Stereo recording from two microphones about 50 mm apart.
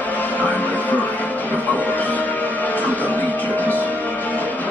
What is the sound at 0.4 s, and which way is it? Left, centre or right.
Music, left.